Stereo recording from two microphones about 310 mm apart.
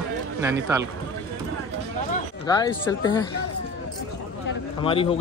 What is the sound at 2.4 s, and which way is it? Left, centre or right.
Speech, centre.